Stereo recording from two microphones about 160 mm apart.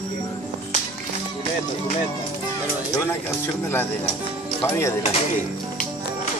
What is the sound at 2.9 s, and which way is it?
Speech, 15° left (ahead or behind).